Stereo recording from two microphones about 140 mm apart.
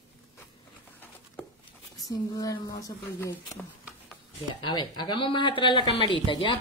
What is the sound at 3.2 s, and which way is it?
Speech, 15° left (ahead or behind).